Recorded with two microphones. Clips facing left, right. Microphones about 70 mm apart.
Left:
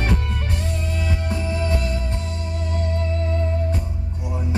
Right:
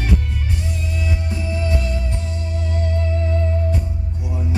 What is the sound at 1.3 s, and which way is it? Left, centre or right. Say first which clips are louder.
Music: left 2 dB; left.